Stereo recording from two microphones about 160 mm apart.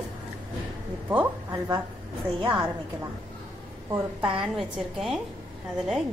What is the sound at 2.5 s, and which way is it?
Speech, 10° right (ahead or behind).